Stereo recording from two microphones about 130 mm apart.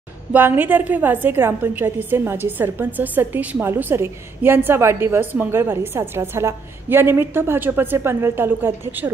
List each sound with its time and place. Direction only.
0.3 s a woman's voice: 15° right (ahead or behind)